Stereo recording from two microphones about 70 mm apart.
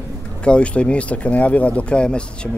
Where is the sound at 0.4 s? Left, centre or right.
Centre.